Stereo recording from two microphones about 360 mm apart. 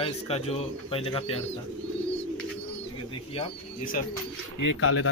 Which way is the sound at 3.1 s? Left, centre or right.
Centre.